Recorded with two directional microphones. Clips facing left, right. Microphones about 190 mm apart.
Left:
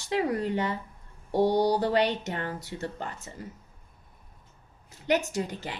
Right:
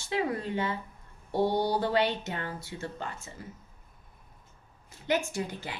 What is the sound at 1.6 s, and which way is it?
A woman's voice, 40° left (ahead or behind).